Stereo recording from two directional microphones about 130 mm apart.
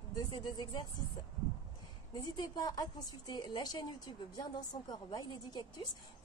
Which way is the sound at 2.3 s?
30° left (ahead or behind).